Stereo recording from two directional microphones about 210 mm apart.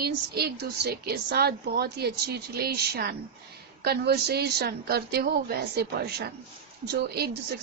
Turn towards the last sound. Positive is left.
turn(degrees=-50)  # may be behind; listen again after turning